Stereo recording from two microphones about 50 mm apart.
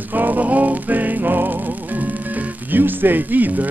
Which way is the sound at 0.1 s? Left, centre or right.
Right.